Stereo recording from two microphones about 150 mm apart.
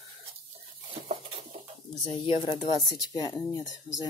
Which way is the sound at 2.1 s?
35° left (ahead or behind).